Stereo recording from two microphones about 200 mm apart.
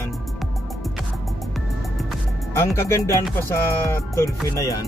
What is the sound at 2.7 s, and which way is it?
Speech, 15° left (ahead or behind).